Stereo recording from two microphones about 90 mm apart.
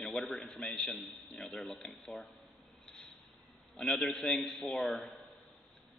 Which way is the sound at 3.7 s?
Centre (ahead or behind).